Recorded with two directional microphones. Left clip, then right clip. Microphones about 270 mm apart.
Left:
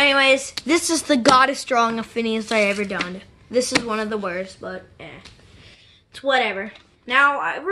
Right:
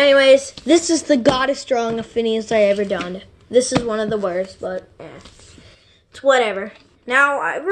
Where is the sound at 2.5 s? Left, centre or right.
Left.